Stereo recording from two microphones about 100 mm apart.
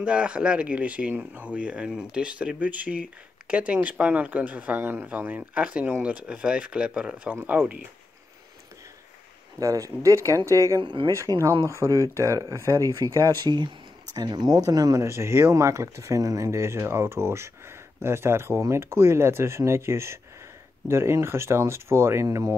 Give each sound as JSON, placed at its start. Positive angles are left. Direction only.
{"t": 0.0, "sound": "speech", "side_deg": -10}
{"t": 9.6, "sound": "speech", "side_deg": -35}
{"t": 10.8, "sound": "speech", "side_deg": -55}
{"t": 11.1, "sound": "speech", "side_deg": -30}